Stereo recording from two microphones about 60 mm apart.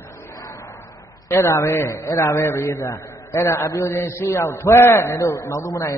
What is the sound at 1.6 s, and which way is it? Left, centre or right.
Speech, left.